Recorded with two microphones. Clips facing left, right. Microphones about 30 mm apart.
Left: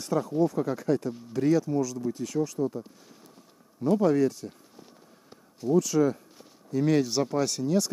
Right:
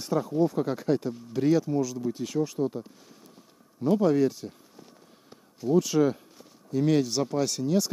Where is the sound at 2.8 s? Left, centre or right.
Centre.